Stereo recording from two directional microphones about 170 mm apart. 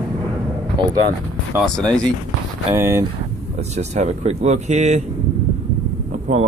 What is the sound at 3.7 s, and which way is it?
Speech, 40° right (ahead or behind).